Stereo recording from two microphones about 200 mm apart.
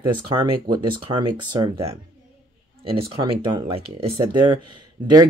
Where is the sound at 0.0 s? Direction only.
25° right (ahead or behind).